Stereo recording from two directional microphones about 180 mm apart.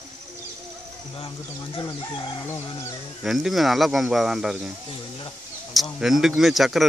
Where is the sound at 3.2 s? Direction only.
Centre (ahead or behind).